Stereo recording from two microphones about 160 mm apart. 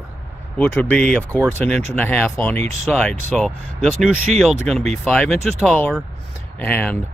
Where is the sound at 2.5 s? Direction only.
45° right (ahead or behind).